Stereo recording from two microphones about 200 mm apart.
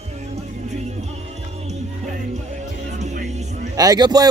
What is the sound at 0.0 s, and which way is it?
Music, 35° right (ahead or behind).